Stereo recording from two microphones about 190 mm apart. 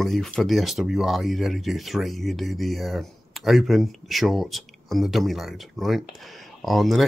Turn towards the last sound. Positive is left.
turn(degrees=0)  # may be behind; listen again after turning